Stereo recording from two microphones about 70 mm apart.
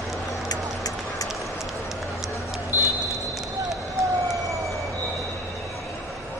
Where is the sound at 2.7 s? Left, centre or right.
Left.